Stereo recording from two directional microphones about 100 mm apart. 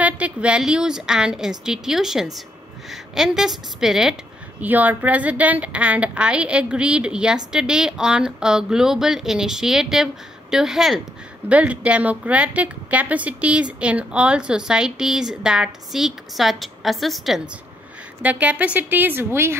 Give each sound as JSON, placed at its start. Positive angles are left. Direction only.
{"t": 0.0, "sound": "a woman's voice", "side_deg": -10}
{"t": 4.6, "sound": "a woman's voice", "side_deg": -15}
{"t": 11.4, "sound": "a woman's voice", "side_deg": -15}
{"t": 18.2, "sound": "a woman's voice", "side_deg": -15}